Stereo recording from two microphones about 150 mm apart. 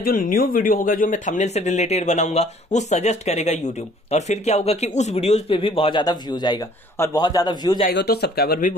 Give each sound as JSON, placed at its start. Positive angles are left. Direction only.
{"t": 0.0, "sound": "a man's voice", "side_deg": 70}
{"t": 7.9, "sound": "speech", "side_deg": 90}